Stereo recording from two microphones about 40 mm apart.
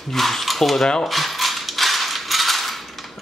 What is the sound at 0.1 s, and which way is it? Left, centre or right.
Speech, centre.